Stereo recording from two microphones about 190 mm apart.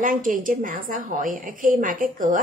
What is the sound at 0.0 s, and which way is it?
A woman's voice, 45° right (ahead or behind).